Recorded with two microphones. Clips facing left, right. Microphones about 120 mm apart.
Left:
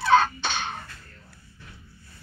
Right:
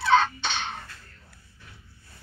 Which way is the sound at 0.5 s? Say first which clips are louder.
Left 1 dB; 5° left (ahead or behind).